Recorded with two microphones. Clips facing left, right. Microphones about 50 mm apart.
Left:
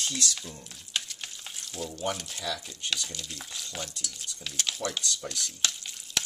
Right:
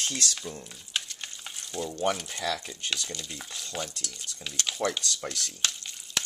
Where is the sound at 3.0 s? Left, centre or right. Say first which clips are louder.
Right 2 dB; centre.